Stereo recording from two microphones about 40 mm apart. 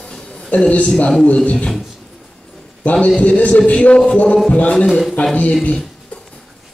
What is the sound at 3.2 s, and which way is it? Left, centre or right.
A man's voice, left.